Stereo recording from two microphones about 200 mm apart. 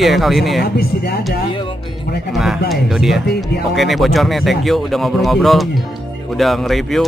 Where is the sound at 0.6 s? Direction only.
50° left (ahead or behind).